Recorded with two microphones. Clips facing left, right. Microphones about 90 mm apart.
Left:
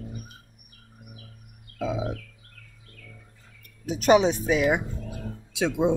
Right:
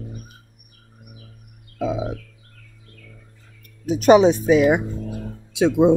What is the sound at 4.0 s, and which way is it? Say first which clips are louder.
Speech: right 6 dB; 25° right (ahead or behind).